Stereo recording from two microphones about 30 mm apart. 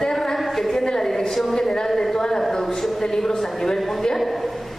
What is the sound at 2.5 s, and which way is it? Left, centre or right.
A man's voice, centre.